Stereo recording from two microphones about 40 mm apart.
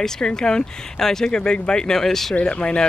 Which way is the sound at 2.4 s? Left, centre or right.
Left.